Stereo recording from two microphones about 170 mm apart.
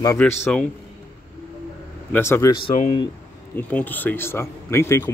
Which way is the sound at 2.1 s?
15° left (ahead or behind).